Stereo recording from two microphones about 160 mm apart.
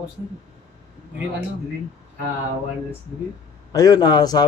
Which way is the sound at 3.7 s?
25° left (ahead or behind).